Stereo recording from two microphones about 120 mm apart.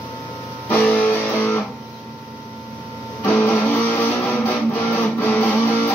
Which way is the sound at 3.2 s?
20° left (ahead or behind).